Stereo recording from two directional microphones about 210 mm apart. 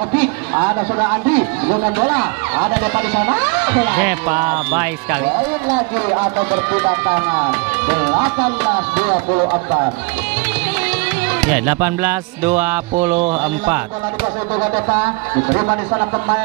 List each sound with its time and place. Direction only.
0.6 s speech: 15° right (ahead or behind)
9.3 s speech: 20° right (ahead or behind)
11.4 s speech: 10° right (ahead or behind)
15.4 s speech: 20° right (ahead or behind)